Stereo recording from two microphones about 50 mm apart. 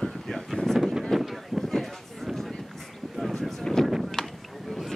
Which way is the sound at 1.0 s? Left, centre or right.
Centre.